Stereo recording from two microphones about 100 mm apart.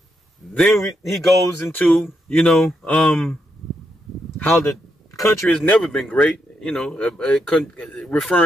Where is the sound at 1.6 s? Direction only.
15° left (ahead or behind).